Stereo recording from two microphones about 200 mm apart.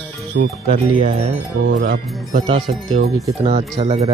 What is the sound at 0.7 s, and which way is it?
Speech, 30° right (ahead or behind).